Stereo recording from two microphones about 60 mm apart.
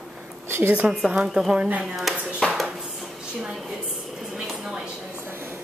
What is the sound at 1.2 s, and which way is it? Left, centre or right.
Speech, centre.